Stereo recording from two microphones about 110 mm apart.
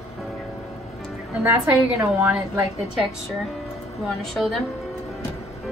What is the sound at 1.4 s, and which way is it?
Speech, 25° right (ahead or behind).